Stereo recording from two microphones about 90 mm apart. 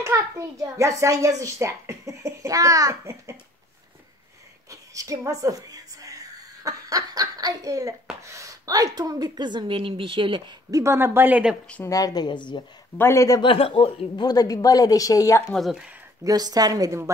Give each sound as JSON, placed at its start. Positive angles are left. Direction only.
{"t": 0.0, "sound": "a child's voice", "side_deg": -35}
{"t": 4.6, "sound": "a woman's voice", "side_deg": -40}
{"t": 10.7, "sound": "speech", "side_deg": -30}
{"t": 11.8, "sound": "a woman's voice", "side_deg": 40}
{"t": 12.9, "sound": "a woman's voice", "side_deg": 30}
{"t": 13.4, "sound": "speech", "side_deg": 80}
{"t": 14.2, "sound": "a woman's voice", "side_deg": 45}
{"t": 16.3, "sound": "a child's voice", "side_deg": -45}